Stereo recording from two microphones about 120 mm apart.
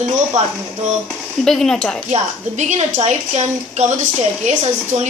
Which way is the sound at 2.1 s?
75° right (ahead or behind).